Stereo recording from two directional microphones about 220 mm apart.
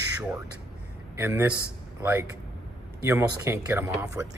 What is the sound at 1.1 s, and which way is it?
Speech, 10° right (ahead or behind).